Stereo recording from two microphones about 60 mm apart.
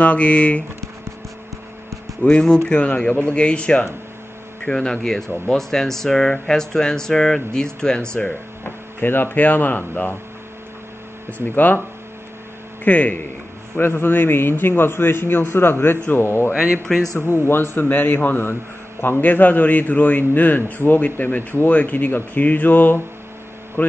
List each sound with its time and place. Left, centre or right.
0.0 s a man's voice: left
2.2 s speech: centre
8.6 s a man's voice: left
11.2 s a man's voice: left
12.8 s a man's voice: left
13.7 s a man's voice: left
16.5 s speech: centre
17.3 s a man's voice: left